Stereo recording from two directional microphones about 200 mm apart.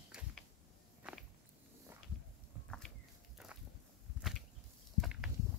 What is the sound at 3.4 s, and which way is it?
Walk, centre (ahead or behind).